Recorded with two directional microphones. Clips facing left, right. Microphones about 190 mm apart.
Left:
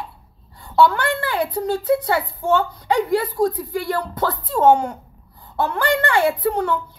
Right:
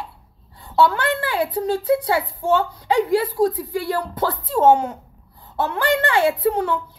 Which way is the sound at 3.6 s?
5° right (ahead or behind).